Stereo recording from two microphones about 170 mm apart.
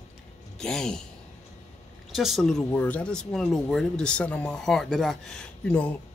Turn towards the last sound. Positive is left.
turn(degrees=5)  # may be behind; listen again after turning